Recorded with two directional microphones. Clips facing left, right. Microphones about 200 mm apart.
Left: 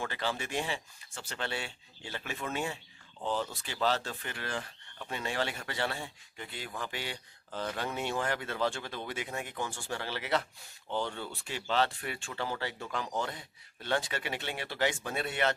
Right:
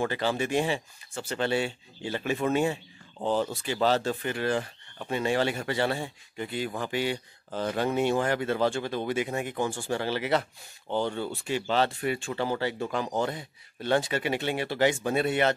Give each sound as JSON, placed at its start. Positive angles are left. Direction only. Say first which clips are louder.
{"t": 0.4, "sound": "speech", "louder": "right 9 dB", "side_deg": -15}
{"t": 3.2, "sound": "speech", "louder": "right 7 dB", "side_deg": -40}
{"t": 3.6, "sound": "speech", "louder": "right 6 dB", "side_deg": -15}
{"t": 7.5, "sound": "speech", "louder": "right 8 dB", "side_deg": -20}
{"t": 9.6, "sound": "speech", "louder": "right 9 dB", "side_deg": -35}
{"t": 9.8, "sound": "speech", "louder": "right 6 dB", "side_deg": -15}
{"t": 10.9, "sound": "speech", "louder": "right 6 dB", "side_deg": -30}
{"t": 11.4, "sound": "speech", "louder": "right 4 dB", "side_deg": -10}
{"t": 13.8, "sound": "speech", "louder": "right 7 dB", "side_deg": -10}